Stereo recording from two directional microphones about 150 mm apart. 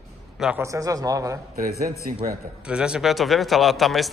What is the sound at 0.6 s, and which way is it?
Speech, 20° right (ahead or behind).